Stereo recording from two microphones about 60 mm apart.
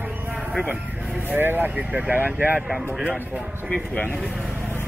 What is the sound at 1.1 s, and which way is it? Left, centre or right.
Speech, right.